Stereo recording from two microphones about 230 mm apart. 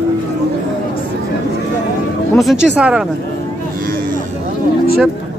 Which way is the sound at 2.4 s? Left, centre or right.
Centre.